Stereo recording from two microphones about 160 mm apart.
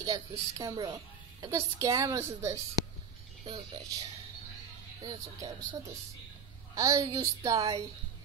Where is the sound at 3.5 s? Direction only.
30° right (ahead or behind).